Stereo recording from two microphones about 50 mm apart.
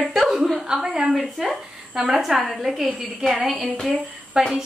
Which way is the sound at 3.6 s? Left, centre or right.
Centre.